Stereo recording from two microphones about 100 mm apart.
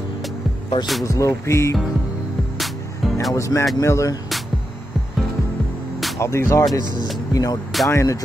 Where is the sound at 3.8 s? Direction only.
30° left (ahead or behind).